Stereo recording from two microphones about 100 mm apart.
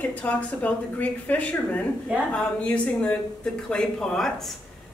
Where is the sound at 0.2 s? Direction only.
15° left (ahead or behind).